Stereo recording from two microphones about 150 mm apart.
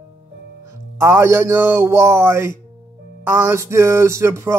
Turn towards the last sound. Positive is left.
turn(degrees=-20)  # may be behind; listen again after turning